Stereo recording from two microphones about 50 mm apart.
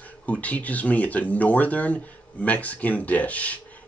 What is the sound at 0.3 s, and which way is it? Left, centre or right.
Speech, left.